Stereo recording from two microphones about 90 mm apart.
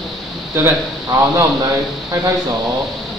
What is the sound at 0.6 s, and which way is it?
Speech, 35° right (ahead or behind).